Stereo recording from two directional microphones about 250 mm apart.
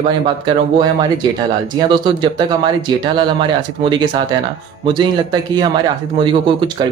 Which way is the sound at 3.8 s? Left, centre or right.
Centre.